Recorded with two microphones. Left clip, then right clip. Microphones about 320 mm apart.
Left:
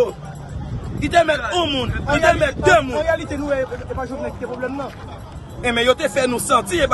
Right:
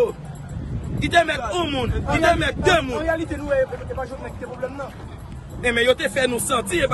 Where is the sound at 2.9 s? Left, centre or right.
Left.